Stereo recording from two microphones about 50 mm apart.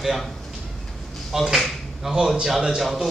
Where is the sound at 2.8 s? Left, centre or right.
Centre.